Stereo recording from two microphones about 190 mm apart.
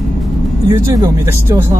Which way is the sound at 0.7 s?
20° right (ahead or behind).